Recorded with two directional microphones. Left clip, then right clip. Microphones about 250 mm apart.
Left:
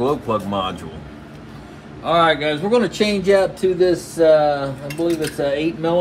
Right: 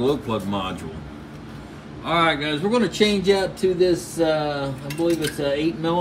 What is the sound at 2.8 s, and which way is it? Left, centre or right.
Speech, centre.